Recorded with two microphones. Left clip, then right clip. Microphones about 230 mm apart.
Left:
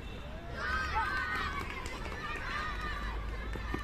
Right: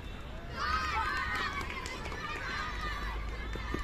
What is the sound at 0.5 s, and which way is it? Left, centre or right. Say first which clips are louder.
Run: right 1 dB; right.